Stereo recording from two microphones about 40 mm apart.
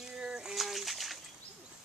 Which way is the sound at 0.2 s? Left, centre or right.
Centre.